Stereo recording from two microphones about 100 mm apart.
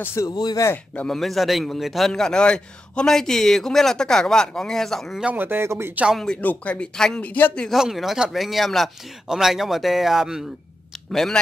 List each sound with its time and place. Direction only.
0.0 s speech: 30° left (ahead or behind)
0.3 s speech: 45° left (ahead or behind)
1.0 s a man's voice: centre (ahead or behind)
5.2 s speech: 20° right (ahead or behind)
6.1 s speech: 10° left (ahead or behind)
7.3 s speech: 20° left (ahead or behind)
7.7 s a man's voice: centre (ahead or behind)